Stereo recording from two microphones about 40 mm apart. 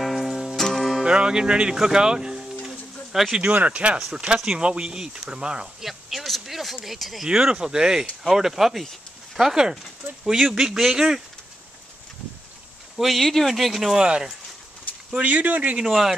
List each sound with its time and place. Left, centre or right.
0.0 s music: centre
0.6 s music: centre
1.0 s speech: right
1.8 s a sound: centre
3.4 s speech: right
5.8 s speech: centre
7.2 s speech: right
12.9 s speech: centre
13.9 s speech: right
15.1 s speech: right
15.8 s speech: centre